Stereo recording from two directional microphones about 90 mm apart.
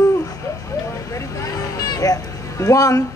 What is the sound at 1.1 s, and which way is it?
Speech, 45° left (ahead or behind).